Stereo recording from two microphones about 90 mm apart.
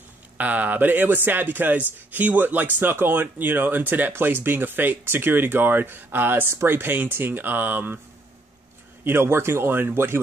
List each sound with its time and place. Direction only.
0.4 s a man's voice: 20° right (ahead or behind)
9.0 s a man's voice: 25° right (ahead or behind)